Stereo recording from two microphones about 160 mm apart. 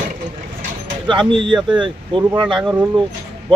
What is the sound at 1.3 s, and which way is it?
Speech, 30° right (ahead or behind).